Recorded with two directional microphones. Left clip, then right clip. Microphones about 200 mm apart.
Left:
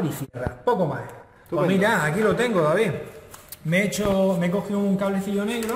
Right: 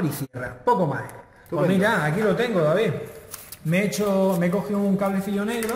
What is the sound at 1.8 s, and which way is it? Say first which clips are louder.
A man's voice: left 1 dB; 10° left (ahead or behind).